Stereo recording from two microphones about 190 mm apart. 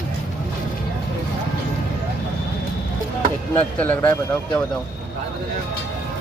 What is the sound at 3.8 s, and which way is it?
Speech, 10° left (ahead or behind).